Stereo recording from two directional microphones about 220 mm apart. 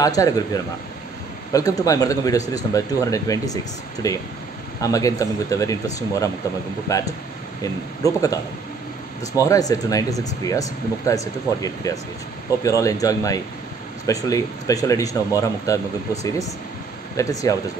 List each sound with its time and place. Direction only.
0.0 s speech: 15° left (ahead or behind)